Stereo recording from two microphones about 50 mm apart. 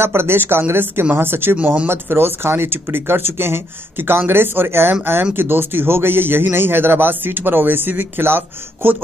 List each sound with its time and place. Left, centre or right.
0.0 s a man's voice: right